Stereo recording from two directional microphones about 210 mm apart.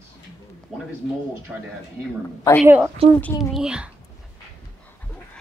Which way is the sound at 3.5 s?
5° right (ahead or behind).